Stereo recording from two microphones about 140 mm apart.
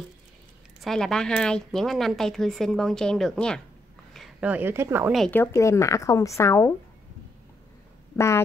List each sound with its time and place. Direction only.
0.8 s speech: 5° left (ahead or behind)
4.4 s speech: 10° right (ahead or behind)
5.3 s a woman's voice: 20° left (ahead or behind)